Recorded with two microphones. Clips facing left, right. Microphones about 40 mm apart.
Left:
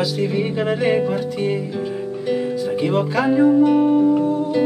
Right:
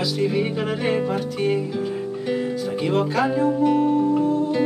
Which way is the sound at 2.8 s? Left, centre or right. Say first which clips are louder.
Left 1 dB; centre.